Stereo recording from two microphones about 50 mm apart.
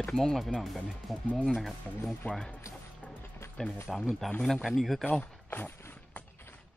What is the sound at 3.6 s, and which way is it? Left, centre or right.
Speech, centre.